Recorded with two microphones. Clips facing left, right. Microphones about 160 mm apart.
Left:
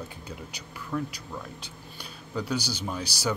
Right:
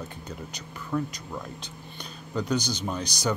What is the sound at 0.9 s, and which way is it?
Speech, 5° right (ahead or behind).